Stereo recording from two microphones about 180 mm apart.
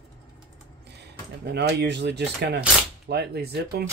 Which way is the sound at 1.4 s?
70° right (ahead or behind).